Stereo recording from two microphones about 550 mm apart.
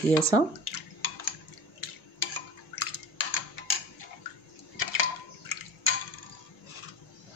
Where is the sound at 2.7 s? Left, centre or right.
Left.